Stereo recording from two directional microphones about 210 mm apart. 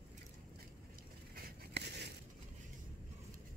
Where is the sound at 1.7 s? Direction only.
50° right (ahead or behind).